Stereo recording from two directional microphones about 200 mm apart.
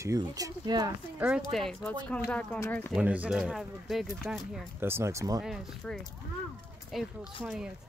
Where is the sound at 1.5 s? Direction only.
Centre (ahead or behind).